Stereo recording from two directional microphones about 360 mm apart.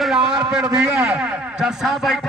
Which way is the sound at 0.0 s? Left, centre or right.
Centre.